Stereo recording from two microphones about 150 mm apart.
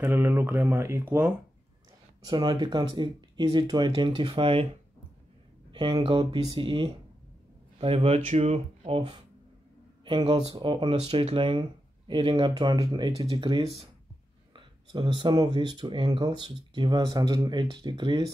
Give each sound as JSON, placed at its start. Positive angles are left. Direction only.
{"t": 0.0, "sound": "speech", "side_deg": -15}
{"t": 2.2, "sound": "speech", "side_deg": -30}
{"t": 5.7, "sound": "speech", "side_deg": -30}